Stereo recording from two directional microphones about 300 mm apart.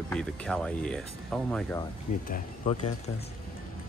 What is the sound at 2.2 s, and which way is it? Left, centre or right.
Speech, left.